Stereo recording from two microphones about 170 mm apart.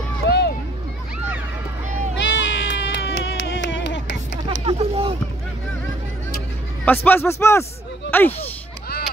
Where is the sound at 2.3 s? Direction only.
90° left.